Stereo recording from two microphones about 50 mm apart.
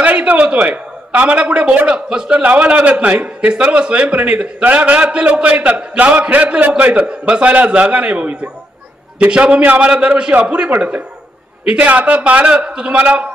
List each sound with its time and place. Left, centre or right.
0.0 s a sound: right
1.9 s a man's voice: centre
5.0 s a man's voice: right
11.8 s a man's voice: right